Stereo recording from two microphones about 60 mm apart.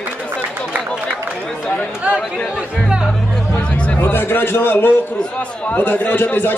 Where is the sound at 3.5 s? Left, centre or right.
Centre.